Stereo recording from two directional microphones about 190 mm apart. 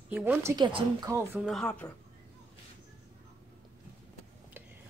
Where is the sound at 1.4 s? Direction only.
Centre (ahead or behind).